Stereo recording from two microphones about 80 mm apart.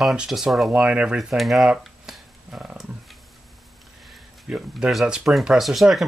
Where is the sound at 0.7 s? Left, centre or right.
Centre.